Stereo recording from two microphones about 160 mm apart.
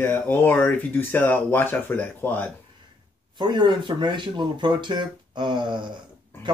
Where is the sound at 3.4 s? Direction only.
30° right (ahead or behind).